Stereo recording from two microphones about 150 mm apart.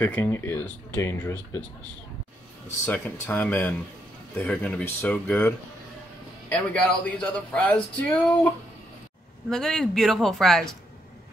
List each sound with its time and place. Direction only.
0.0 s speech: 15° left (ahead or behind)
2.9 s speech: 10° left (ahead or behind)
6.5 s speech: 10° left (ahead or behind)
9.5 s speech: 5° left (ahead or behind)